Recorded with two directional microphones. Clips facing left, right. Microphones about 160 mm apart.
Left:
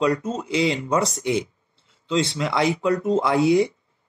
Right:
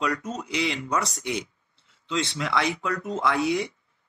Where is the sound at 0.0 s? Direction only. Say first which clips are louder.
Left 7 dB; 25° left (ahead or behind).